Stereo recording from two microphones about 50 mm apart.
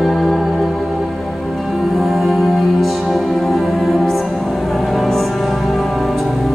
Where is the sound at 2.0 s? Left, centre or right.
Centre.